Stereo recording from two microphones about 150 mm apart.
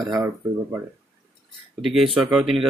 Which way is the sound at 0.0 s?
20° right (ahead or behind).